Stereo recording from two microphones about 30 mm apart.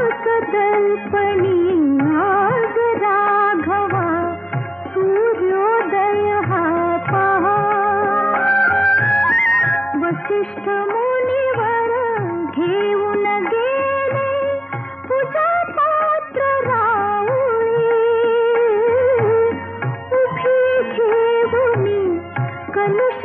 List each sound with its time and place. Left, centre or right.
0.0 s music of bollywood: left